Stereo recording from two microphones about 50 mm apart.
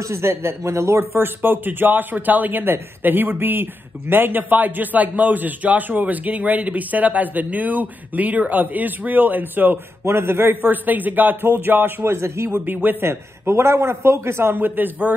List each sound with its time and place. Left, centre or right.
0.0 s a man's voice: right
1.1 s a man's voice: right
10.0 s a man's voice: right
12.0 s a man's voice: right
12.6 s a man's voice: right
13.0 s a man's voice: right